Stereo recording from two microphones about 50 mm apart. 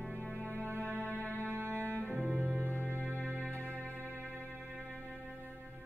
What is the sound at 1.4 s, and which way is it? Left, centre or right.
Music, right.